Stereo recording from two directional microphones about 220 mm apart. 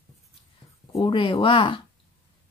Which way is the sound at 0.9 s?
20° left (ahead or behind).